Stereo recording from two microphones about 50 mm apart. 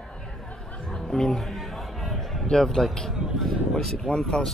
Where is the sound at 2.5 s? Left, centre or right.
Centre.